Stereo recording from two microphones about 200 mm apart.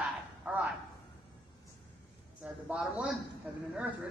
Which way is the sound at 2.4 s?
5° right (ahead or behind).